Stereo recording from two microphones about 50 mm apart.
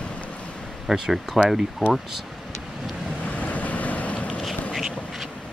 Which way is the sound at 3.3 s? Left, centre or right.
Left.